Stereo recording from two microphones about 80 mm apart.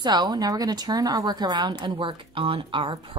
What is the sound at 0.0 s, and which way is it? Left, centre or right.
A woman's voice, right.